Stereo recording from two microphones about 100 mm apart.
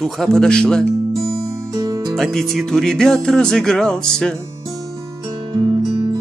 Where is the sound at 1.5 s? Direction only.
40° right (ahead or behind).